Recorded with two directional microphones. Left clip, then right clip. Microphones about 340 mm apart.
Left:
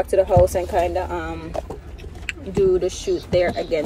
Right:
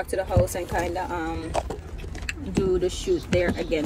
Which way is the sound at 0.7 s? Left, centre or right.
Centre.